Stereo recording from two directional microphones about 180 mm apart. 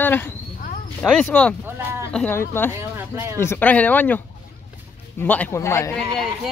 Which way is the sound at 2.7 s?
15° right (ahead or behind).